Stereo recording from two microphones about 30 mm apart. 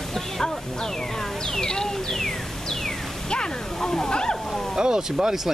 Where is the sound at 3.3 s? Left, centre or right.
Left.